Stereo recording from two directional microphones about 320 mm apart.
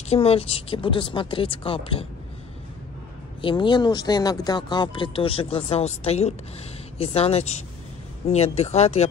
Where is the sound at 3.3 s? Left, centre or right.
Centre.